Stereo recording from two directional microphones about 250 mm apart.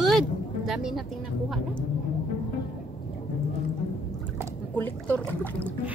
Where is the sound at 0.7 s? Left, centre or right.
Centre.